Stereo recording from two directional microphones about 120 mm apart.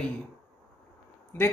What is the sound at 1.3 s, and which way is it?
Speech, 20° left (ahead or behind).